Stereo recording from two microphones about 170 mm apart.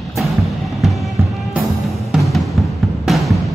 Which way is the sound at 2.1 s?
Centre (ahead or behind).